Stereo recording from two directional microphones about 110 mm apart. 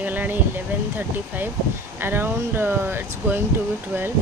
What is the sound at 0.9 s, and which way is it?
Speech, 15° right (ahead or behind).